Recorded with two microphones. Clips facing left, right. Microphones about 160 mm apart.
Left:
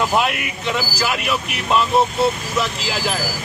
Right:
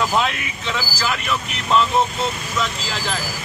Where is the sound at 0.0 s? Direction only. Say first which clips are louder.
Left 2 dB; 10° left (ahead or behind).